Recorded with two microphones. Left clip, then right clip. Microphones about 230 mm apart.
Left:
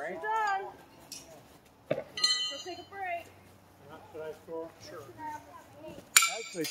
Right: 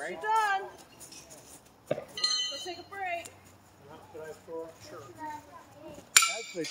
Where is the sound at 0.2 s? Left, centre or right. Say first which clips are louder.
Right 4 dB; right.